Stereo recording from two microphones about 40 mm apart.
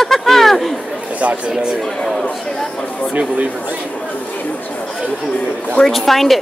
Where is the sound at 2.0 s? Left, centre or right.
Centre.